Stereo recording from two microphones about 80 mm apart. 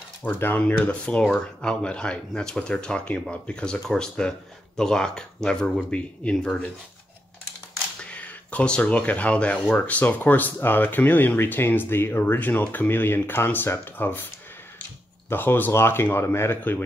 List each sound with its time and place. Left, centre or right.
0.2 s speech: left
8.0 s speech: centre